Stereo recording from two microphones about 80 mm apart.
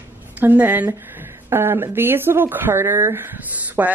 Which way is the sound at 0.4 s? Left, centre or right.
Right.